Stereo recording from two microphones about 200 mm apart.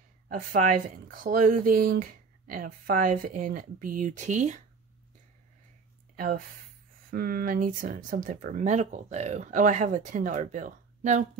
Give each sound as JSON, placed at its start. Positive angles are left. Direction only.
{"t": 0.3, "sound": "speech", "side_deg": -45}
{"t": 6.1, "sound": "speech", "side_deg": -45}